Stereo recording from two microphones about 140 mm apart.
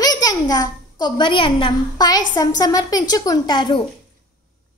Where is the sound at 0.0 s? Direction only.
30° left (ahead or behind).